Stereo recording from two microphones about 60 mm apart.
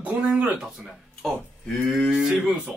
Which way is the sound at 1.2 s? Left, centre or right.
Centre.